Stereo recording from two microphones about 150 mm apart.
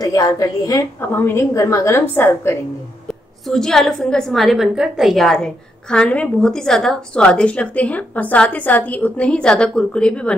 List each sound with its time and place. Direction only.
0.0 s a woman's voice: 25° left (ahead or behind)
3.4 s a woman's voice: 5° left (ahead or behind)